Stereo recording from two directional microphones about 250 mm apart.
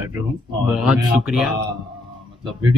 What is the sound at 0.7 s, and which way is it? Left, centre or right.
Speech, centre.